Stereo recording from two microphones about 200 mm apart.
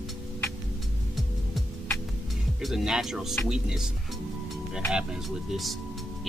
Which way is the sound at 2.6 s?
Centre (ahead or behind).